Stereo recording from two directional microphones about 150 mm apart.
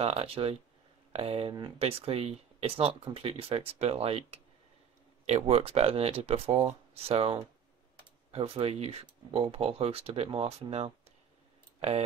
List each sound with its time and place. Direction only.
0.0 s speech: 40° right (ahead or behind)